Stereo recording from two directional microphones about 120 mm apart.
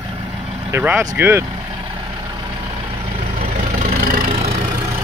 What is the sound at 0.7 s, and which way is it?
Speech, 20° right (ahead or behind).